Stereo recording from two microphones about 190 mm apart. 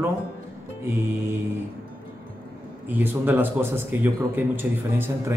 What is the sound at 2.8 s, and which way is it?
A man's voice, 10° right (ahead or behind).